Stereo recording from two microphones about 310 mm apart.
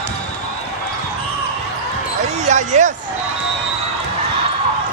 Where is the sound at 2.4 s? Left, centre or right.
Right.